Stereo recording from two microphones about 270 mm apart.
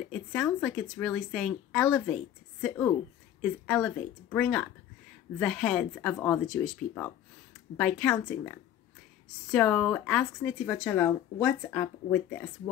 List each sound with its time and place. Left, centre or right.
0.1 s speech: centre